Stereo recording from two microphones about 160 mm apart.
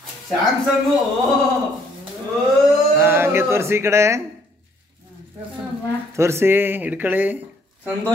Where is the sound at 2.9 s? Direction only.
15° right (ahead or behind).